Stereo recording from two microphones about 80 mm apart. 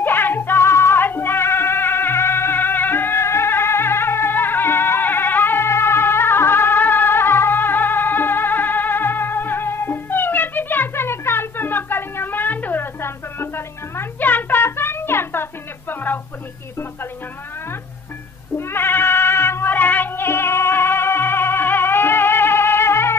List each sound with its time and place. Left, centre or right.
0.0 s music: left
15.9 s a sound: left
18.6 s music: left